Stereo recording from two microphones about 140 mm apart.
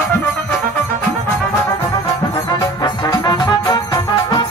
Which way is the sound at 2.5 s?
30° left (ahead or behind).